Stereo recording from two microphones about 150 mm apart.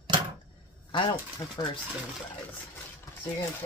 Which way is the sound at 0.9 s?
35° left (ahead or behind).